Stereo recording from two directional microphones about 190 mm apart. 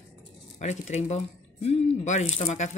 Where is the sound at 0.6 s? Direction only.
40° left (ahead or behind).